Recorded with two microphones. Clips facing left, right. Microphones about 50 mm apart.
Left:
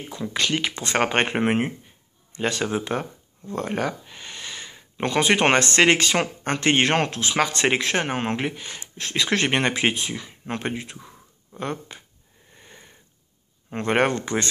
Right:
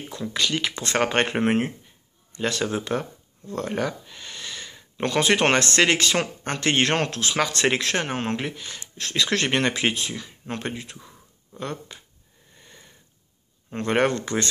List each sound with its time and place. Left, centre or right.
0.1 s speech: centre
12.5 s sniff: centre
13.7 s speech: centre